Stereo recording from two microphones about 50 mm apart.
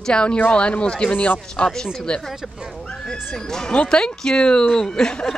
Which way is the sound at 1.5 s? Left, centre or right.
Centre.